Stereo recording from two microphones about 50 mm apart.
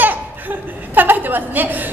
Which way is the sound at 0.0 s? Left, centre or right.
Right.